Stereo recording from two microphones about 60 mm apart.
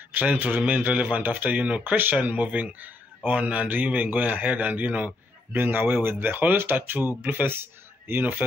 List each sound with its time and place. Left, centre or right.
0.1 s speech: right